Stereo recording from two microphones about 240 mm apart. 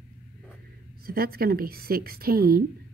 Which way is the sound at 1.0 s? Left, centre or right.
Right.